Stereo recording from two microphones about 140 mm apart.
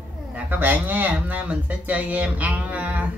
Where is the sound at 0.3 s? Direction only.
15° right (ahead or behind).